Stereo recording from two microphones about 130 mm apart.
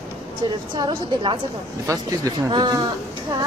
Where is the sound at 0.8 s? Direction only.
40° right (ahead or behind).